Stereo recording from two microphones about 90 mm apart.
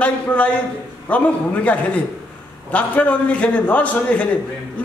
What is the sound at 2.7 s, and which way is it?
A man's voice, 15° left (ahead or behind).